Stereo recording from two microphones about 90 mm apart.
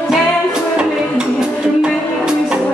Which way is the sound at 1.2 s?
10° right (ahead or behind).